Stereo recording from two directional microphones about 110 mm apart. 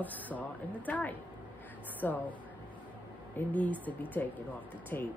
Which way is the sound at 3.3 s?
15° left (ahead or behind).